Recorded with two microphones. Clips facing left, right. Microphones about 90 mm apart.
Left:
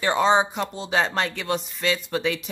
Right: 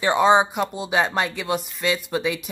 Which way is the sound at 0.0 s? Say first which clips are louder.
Right 3 dB; 15° right (ahead or behind).